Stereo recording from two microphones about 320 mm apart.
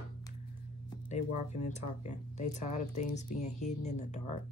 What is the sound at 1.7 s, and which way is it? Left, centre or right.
Speech, left.